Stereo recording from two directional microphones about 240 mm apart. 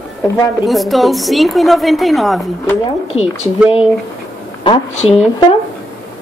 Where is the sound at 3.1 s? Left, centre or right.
Left.